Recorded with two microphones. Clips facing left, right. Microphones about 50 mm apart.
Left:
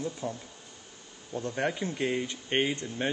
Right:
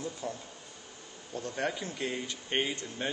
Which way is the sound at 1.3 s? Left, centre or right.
Centre.